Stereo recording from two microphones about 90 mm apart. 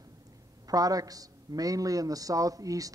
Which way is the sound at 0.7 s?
45° right (ahead or behind).